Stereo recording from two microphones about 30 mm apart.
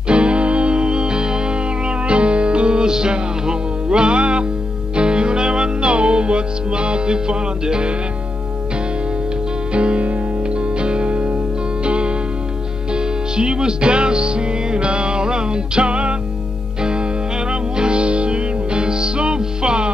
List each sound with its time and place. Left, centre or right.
0.1 s music: right
9.7 s music: right